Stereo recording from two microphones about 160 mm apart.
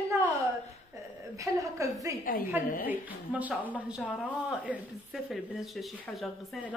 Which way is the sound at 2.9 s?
10° right (ahead or behind).